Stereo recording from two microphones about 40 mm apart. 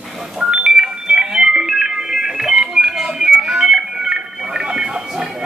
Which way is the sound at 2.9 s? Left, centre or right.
Centre.